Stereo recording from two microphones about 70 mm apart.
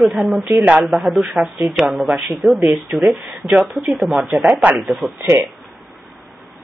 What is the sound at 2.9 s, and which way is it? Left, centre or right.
Speech, right.